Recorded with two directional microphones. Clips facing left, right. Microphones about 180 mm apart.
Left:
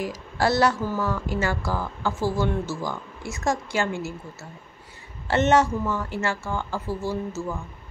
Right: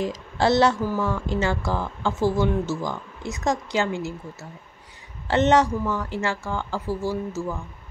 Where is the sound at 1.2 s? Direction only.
25° right (ahead or behind).